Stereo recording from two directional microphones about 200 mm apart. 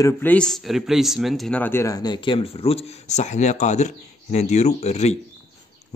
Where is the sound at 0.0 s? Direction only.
10° left (ahead or behind).